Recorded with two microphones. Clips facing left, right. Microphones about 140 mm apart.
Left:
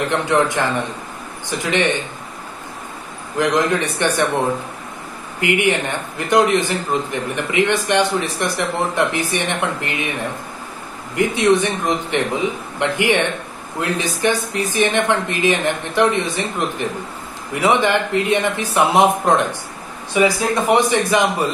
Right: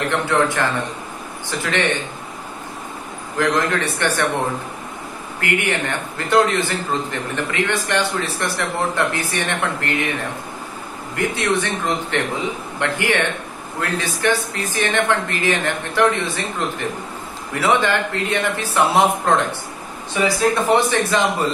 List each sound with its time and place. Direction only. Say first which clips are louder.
0.1 s a man's voice: left 1 dB; 15° left (ahead or behind)
3.3 s a man's voice: left 2 dB; 15° left (ahead or behind)
5.4 s a man's voice: left 4 dB; 15° left (ahead or behind)
11.1 s a man's voice: left 5 dB; 15° left (ahead or behind)